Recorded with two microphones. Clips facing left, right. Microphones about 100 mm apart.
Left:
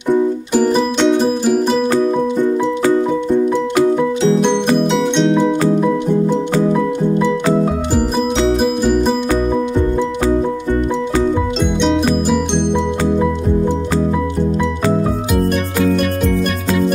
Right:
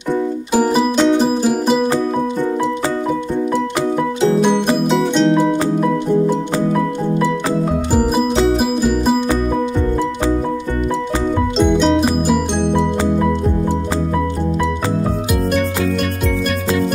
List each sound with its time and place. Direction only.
0.5 s music: 10° right (ahead or behind)
5.1 s music: centre (ahead or behind)
8.5 s music: 5° right (ahead or behind)
11.6 s music: centre (ahead or behind)